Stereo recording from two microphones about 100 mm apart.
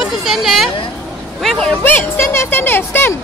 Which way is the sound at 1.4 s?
5° left (ahead or behind).